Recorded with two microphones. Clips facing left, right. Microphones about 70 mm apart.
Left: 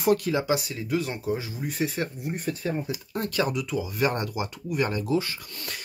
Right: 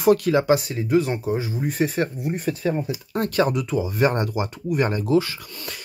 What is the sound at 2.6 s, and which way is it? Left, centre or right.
Speech, right.